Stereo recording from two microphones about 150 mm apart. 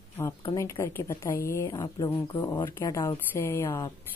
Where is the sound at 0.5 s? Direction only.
20° left (ahead or behind).